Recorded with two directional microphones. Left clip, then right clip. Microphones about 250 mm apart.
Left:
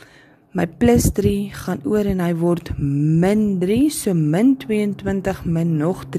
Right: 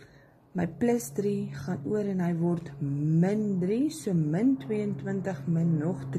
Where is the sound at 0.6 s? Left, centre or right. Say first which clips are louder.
Left 11 dB; left.